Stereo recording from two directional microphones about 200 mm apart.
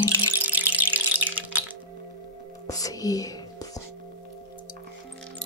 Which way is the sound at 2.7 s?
15° left (ahead or behind).